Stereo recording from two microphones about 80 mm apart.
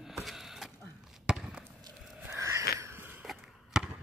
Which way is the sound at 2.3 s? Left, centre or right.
Right.